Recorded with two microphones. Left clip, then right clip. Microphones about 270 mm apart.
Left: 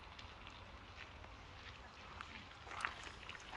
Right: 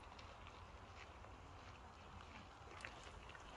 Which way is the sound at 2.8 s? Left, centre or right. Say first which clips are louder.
Left 11 dB; centre.